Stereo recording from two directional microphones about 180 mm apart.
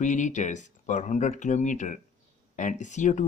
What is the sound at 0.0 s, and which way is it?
Speech, 45° left (ahead or behind).